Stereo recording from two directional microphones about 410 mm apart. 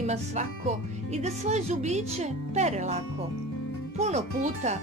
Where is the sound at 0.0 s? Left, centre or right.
Centre.